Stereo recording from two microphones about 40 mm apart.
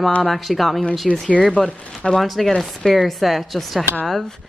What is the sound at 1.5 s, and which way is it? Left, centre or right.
Speech, left.